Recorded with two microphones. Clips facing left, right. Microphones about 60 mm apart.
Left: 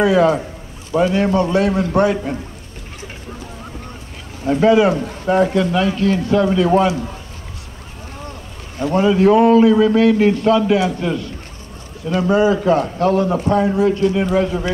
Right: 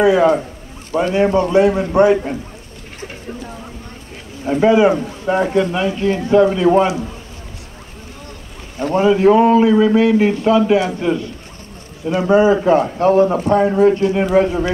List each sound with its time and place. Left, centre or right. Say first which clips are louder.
0.0 s a man's voice: right 1 dB; centre
4.5 s speech: right 1 dB; centre
8.9 s a man's voice: right 1 dB; right
13.5 s speech: right 2 dB; centre
13.7 s speech: right 3 dB; right